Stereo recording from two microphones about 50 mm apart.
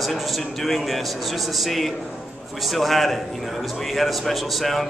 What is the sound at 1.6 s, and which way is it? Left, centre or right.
A man's voice, centre.